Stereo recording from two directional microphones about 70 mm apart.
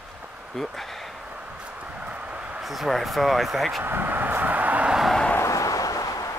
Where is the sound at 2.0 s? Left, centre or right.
Centre.